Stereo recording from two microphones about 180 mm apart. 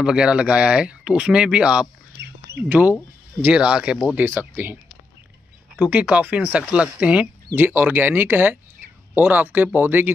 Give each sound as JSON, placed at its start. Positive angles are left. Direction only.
{"t": 0.0, "sound": "speech", "side_deg": -5}
{"t": 2.2, "sound": "duck", "side_deg": -75}
{"t": 3.3, "sound": "speech", "side_deg": -5}
{"t": 5.8, "sound": "speech", "side_deg": -10}